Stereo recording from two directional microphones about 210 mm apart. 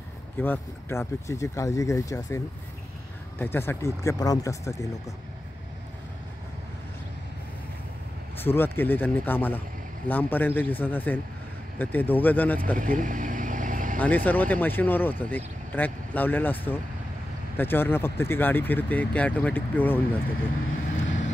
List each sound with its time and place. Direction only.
0.4 s speech: 10° left (ahead or behind)
8.4 s speech: 10° left (ahead or behind)
12.7 s vehicle: 40° right (ahead or behind)
13.9 s speech: 10° left (ahead or behind)